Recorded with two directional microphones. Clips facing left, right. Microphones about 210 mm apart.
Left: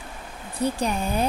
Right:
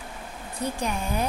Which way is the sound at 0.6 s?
30° left (ahead or behind).